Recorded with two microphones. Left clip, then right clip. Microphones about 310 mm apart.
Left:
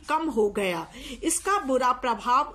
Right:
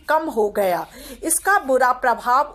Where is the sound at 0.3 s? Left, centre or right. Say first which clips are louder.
Right 6 dB; right.